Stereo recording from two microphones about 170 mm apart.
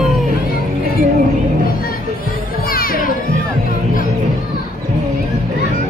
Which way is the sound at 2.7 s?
55° left (ahead or behind).